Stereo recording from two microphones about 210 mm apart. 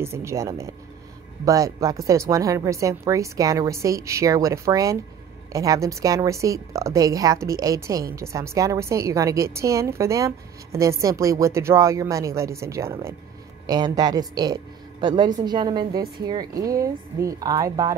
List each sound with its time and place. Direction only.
0.0 s a woman's voice: 15° right (ahead or behind)